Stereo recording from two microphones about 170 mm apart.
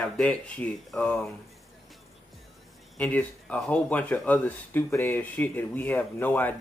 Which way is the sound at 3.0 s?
10° left (ahead or behind).